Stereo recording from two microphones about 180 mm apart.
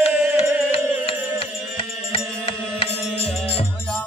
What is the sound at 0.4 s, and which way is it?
Music, 35° left (ahead or behind).